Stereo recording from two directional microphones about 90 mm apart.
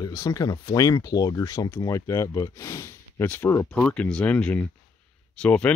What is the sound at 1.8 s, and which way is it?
Speech, 35° left (ahead or behind).